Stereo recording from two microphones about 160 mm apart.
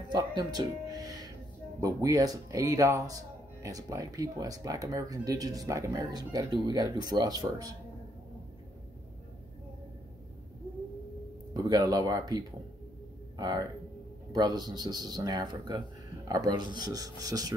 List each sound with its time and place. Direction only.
0.1 s music: 25° right (ahead or behind)
1.8 s speech: 20° right (ahead or behind)
11.5 s speech: 25° right (ahead or behind)